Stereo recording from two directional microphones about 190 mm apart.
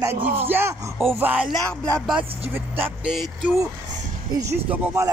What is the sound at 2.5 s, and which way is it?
Speech, 10° right (ahead or behind).